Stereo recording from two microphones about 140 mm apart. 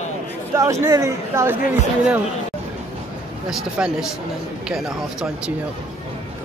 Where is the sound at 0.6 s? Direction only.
20° right (ahead or behind).